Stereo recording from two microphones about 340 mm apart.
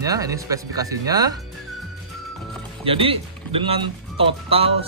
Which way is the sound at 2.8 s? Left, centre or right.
Centre.